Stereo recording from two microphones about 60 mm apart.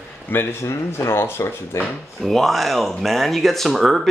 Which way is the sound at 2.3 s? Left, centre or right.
Centre.